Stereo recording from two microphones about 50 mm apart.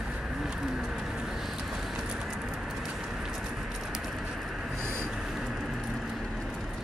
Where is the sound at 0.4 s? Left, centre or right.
Centre.